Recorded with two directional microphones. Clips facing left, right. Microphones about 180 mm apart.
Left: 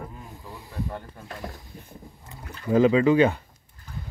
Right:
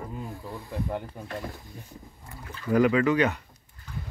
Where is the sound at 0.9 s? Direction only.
15° right (ahead or behind).